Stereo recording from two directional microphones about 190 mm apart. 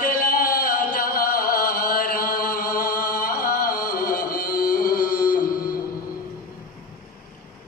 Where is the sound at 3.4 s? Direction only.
50° left (ahead or behind).